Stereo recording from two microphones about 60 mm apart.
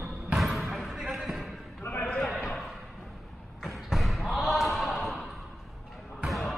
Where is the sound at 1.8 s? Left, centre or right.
Left.